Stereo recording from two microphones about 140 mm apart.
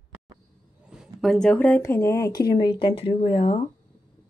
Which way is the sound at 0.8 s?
5° right (ahead or behind).